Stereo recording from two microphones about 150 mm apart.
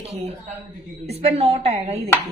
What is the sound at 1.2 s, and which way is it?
Speech, 40° right (ahead or behind).